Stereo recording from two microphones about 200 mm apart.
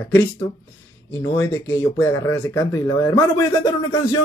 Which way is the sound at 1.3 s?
15° left (ahead or behind).